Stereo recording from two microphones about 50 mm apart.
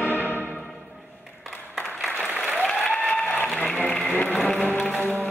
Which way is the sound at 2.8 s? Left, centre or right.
Left.